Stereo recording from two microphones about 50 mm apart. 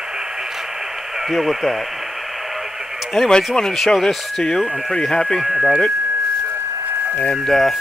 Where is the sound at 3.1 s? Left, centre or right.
Centre.